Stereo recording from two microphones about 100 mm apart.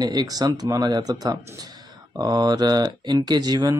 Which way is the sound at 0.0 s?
40° right (ahead or behind).